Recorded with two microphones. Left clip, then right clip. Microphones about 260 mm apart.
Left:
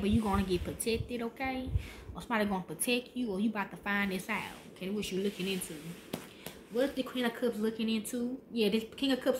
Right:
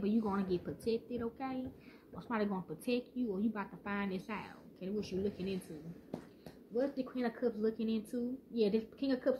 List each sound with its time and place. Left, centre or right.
0.0 s a woman's voice: centre
7.2 s a woman's voice: centre